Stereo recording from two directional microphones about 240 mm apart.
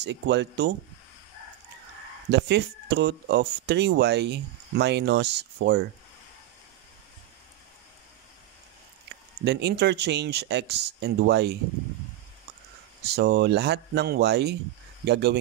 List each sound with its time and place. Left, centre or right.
0.0 s speech: right
2.3 s speech: right
9.4 s speech: right
13.0 s speech: right